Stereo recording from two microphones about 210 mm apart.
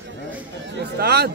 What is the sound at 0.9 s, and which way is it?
Speech, 50° right (ahead or behind).